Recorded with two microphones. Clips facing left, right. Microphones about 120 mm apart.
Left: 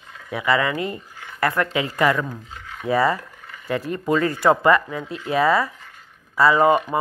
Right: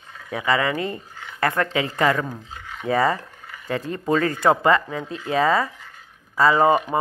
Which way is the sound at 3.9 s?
30° right (ahead or behind).